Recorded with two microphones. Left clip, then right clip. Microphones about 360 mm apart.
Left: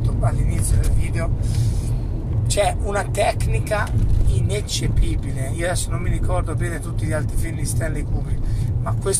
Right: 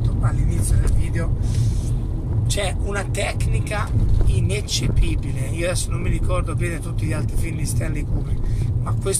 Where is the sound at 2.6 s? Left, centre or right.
Centre.